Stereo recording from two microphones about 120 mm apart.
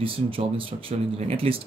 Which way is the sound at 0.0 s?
50° right (ahead or behind).